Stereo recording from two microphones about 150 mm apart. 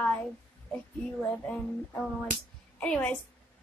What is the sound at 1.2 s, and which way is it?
A woman's voice, 10° left (ahead or behind).